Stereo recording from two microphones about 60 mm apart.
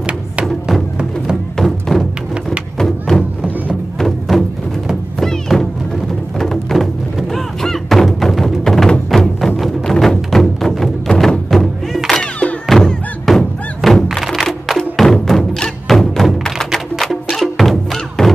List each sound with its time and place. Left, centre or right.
0.9 s music: centre
1.6 s music: centre
12.1 s music: centre
12.6 s music: centre
13.8 s thunk: centre
14.2 s music: centre